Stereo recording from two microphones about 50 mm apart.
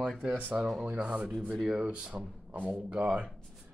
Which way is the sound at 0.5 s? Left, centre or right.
Centre.